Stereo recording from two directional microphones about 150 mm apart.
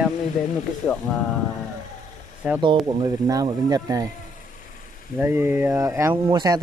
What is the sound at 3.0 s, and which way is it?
Speech, 25° right (ahead or behind).